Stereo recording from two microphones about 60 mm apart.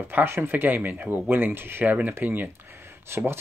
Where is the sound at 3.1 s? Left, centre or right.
Right.